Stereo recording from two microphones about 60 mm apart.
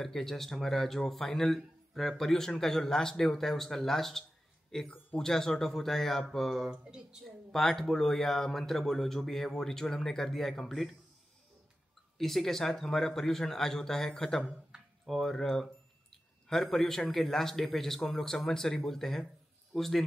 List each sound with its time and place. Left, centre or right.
0.0 s speech: centre
6.7 s speech: centre
7.5 s speech: centre
12.2 s speech: centre
14.7 s a sound: centre
15.0 s speech: centre